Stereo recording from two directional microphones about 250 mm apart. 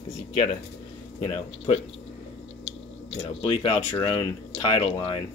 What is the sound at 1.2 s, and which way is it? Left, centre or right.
Speech, left.